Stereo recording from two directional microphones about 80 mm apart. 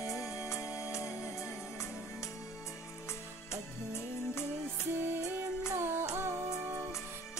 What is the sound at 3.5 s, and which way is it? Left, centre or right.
Music, left.